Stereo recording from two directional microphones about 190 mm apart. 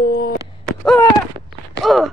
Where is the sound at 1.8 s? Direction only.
Centre (ahead or behind).